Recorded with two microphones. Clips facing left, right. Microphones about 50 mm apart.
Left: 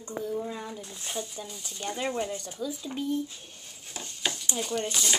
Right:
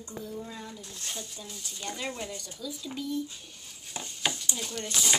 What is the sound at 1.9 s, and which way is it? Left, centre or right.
Speech, centre.